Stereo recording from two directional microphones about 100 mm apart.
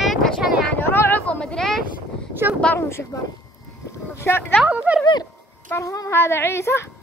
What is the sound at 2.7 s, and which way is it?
Speech, 25° left (ahead or behind).